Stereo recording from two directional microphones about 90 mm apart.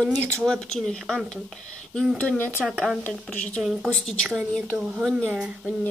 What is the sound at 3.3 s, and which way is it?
Speech, 15° left (ahead or behind).